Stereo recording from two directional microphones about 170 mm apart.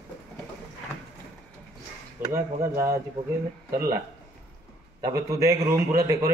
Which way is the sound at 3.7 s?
60° right (ahead or behind).